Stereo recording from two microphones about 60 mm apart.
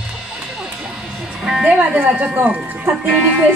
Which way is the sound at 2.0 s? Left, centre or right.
Right.